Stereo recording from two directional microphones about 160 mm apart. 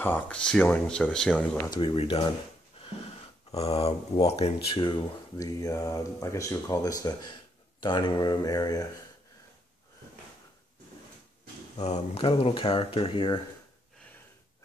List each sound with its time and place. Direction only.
0.0 s speech: 10° left (ahead or behind)
1.7 s speech: 30° left (ahead or behind)
2.8 s wheeze: 35° left (ahead or behind)
3.5 s speech: 40° left (ahead or behind); by 9.0 s 25° left (ahead or behind)
11.8 s speech: 40° left (ahead or behind)